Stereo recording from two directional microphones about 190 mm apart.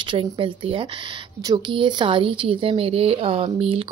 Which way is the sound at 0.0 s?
25° right (ahead or behind).